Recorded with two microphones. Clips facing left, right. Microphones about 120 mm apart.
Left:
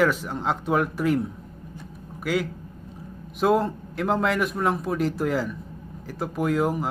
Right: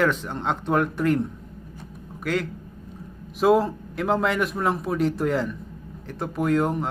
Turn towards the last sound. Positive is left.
turn(degrees=0)  # may be behind; listen again after turning